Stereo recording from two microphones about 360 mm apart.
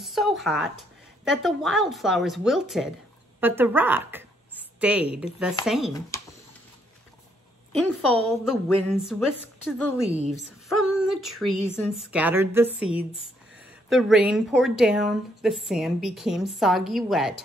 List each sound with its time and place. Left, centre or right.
0.0 s a sound: centre
1.2 s speech: centre
7.7 s speech: centre
10.0 s a woman's voice: centre
10.7 s speech: centre